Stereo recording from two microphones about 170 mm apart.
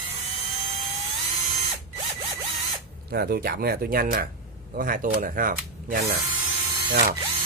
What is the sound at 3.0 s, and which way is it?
Speech, 65° right (ahead or behind).